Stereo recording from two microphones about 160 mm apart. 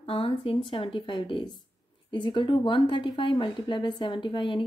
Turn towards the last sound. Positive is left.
turn(degrees=30)  # may be behind; listen again after turning